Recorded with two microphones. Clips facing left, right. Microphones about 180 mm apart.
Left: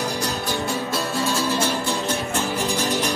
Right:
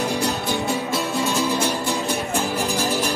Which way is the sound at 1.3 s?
15° right (ahead or behind).